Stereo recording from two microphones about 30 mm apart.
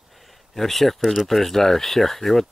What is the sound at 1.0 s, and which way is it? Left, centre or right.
Speech, centre.